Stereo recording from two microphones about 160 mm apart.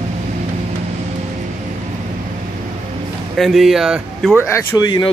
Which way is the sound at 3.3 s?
Centre (ahead or behind).